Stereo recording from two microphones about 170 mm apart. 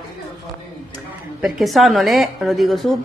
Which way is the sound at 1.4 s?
Centre (ahead or behind).